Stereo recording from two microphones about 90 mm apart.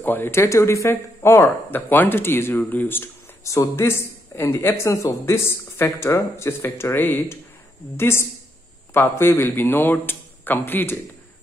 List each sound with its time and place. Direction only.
0.0 s speech: 20° left (ahead or behind)